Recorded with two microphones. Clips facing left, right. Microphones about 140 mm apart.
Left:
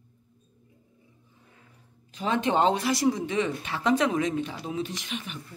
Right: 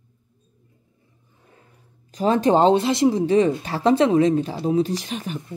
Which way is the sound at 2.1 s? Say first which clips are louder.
Right 8 dB; 40° right (ahead or behind).